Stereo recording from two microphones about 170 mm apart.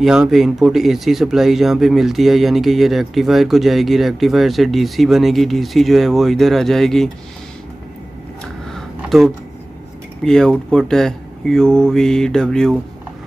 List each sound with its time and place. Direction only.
0.0 s speech: 5° right (ahead or behind)
8.7 s a sound: centre (ahead or behind)
10.2 s speech: 5° left (ahead or behind)